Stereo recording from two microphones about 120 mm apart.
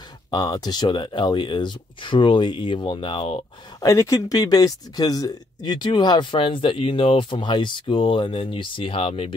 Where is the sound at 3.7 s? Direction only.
25° left (ahead or behind).